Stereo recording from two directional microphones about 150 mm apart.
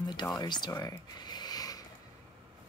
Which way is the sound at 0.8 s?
25° left (ahead or behind).